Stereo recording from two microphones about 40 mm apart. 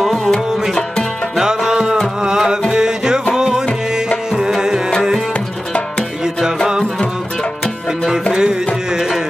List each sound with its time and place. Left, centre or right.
0.0 s music: centre
1.3 s music: centre
4.3 s tabla: centre
8.3 s music: centre